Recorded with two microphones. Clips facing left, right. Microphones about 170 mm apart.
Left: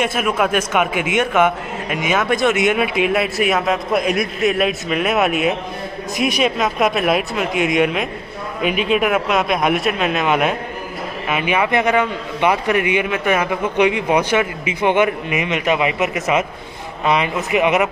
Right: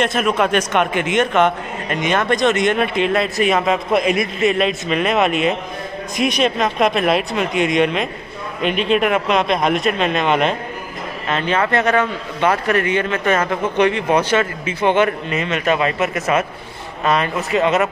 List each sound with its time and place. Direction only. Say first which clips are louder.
0.0 s a man's voice: right 1 dB; 5° left (ahead or behind)